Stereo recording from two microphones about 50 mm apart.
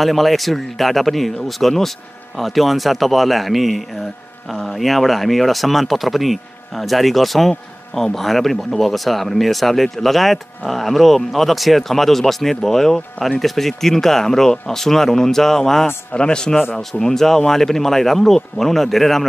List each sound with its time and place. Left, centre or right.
0.0 s speech: centre
16.1 s speech: centre